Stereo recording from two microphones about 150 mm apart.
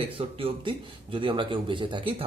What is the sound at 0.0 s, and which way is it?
A man's voice, 35° right (ahead or behind).